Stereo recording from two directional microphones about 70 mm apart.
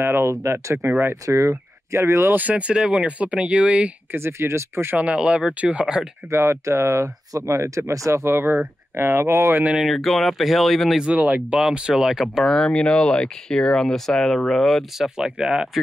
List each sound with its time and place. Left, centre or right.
0.0 s speech: right
0.8 s speech: right
1.2 s speech: right
2.3 s speech: right
4.1 s speech: right
4.9 s speech: centre
6.3 s speech: right
9.8 s speech: centre
11.1 s speech: right; by 12.4 s centre
12.4 s speech: centre
15.1 s speech: centre